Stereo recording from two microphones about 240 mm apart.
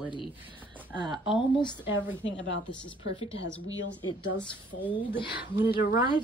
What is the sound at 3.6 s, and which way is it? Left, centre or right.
Speech, left.